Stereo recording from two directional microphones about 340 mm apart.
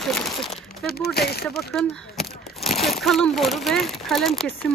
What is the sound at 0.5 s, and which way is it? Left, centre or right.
Speech, left.